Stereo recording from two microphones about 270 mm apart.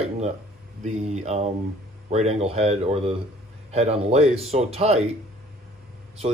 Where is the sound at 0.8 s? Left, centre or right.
Right.